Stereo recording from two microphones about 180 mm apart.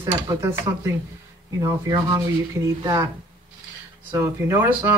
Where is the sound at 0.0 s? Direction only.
20° right (ahead or behind).